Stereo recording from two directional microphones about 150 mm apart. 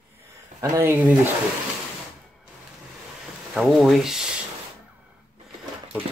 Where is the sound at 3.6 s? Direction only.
Centre (ahead or behind).